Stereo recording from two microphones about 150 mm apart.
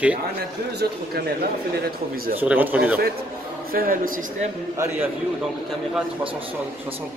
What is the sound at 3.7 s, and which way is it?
Speech, 75° right (ahead or behind).